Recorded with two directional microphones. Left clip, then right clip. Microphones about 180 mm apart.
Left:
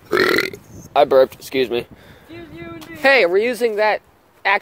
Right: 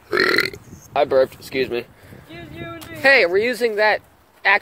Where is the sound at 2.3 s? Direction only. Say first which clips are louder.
Right 1 dB; 55° right (ahead or behind).